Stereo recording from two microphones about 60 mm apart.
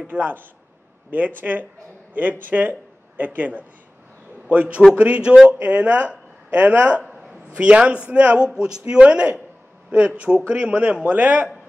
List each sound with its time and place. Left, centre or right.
0.0 s a man's voice: right